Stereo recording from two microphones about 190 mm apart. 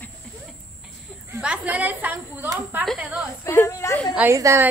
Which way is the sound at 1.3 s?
5° right (ahead or behind).